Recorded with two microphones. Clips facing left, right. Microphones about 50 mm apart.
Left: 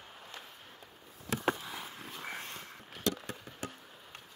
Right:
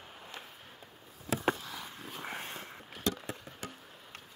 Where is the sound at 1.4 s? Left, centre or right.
Centre.